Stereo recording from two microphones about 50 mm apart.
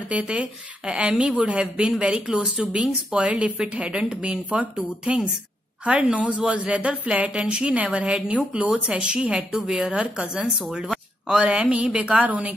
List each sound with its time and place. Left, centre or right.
0.1 s speech: right